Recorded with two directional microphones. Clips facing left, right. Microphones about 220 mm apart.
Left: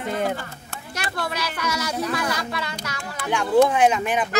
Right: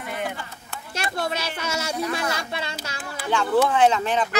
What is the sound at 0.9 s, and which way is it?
Speech, 25° right (ahead or behind).